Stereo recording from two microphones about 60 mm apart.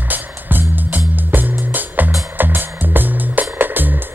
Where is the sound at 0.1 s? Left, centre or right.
Right.